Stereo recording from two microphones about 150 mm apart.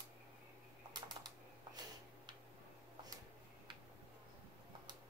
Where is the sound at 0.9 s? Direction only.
30° right (ahead or behind).